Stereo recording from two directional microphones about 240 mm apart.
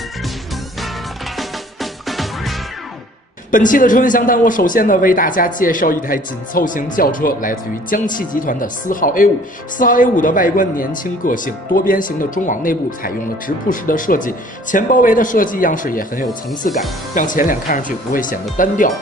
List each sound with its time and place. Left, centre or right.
1.3 s music: centre
3.5 s speech: left